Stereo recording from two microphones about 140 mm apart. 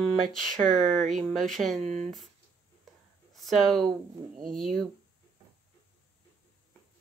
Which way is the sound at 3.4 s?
Centre (ahead or behind).